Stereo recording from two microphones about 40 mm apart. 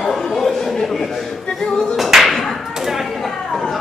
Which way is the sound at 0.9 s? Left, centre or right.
Centre.